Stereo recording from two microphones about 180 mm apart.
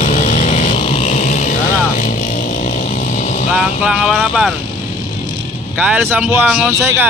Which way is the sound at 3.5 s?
5° right (ahead or behind).